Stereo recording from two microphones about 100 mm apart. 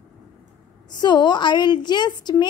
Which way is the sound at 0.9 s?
45° left (ahead or behind).